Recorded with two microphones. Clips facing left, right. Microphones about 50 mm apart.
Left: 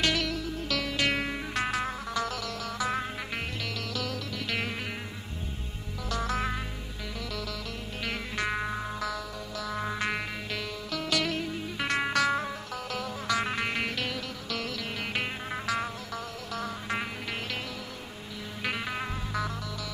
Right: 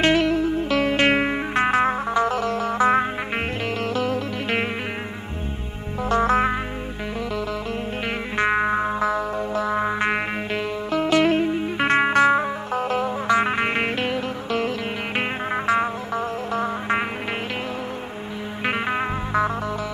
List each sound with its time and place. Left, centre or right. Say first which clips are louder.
0.0 s music: right 10 dB; right
6.0 s music: right 12 dB; right
8.4 s music: right 12 dB; right
18.7 s music: right 10 dB; right